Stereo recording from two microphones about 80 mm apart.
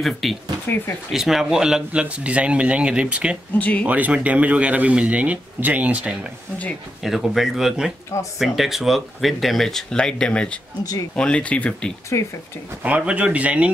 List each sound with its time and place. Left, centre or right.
0.0 s speech: centre
3.5 s speech: centre
3.8 s speech: centre
7.0 s speech: centre
12.1 s speech: left
12.8 s speech: centre